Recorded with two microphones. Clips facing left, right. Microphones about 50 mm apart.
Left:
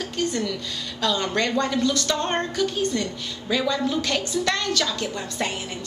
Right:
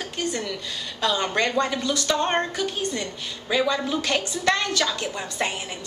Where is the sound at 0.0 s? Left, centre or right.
Centre.